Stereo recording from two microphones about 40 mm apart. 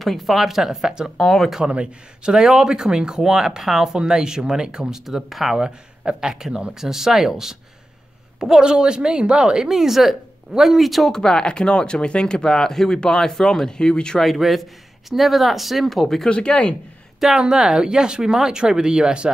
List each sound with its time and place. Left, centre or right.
0.0 s speech: centre
1.1 s speech: centre
1.7 s speech: right
2.3 s speech: centre
5.6 s speech: right
9.7 s speech: centre
11.1 s speech: centre
14.2 s speech: centre
16.3 s speech: left
17.4 s speech: centre